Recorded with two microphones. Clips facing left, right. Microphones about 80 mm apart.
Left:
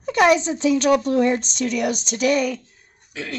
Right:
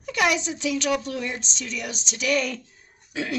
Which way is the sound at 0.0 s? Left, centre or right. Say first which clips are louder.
Left 7 dB; left.